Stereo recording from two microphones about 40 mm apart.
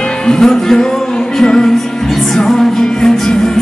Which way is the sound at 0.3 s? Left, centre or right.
Centre.